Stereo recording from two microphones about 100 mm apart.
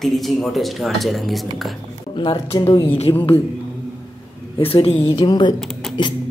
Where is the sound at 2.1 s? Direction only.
55° left (ahead or behind).